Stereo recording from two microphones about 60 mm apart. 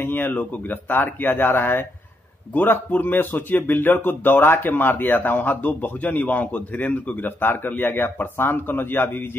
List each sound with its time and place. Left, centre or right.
0.0 s speech: left